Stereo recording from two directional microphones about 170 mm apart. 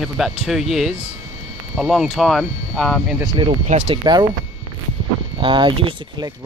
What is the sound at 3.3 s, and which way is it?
Speech, 35° right (ahead or behind).